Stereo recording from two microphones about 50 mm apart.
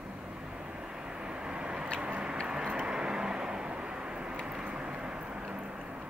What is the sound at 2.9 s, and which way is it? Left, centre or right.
Vehicle, centre.